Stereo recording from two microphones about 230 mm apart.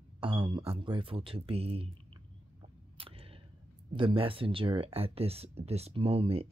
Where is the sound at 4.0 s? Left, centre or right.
Right.